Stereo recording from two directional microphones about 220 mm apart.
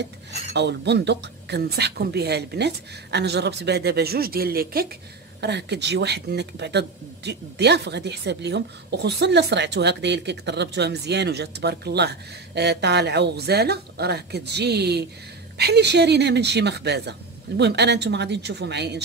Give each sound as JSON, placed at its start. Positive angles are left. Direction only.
{"t": 0.6, "sound": "speech", "side_deg": -50}